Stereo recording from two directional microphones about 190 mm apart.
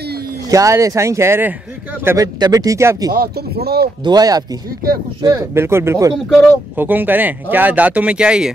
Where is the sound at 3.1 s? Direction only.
55° right (ahead or behind).